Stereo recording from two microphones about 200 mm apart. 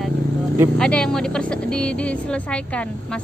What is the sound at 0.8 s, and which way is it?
A woman's voice, 5° left (ahead or behind).